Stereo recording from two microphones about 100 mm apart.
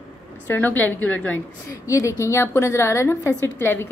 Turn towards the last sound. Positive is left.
turn(degrees=25)  # may be behind; listen again after turning